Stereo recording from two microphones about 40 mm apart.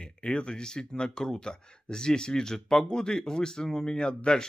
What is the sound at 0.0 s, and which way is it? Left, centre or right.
Speech, left.